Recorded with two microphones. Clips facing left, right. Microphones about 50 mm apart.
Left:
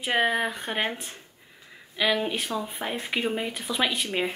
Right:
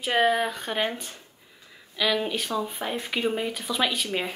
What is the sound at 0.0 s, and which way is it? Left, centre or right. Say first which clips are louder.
Speech: right 2 dB; centre.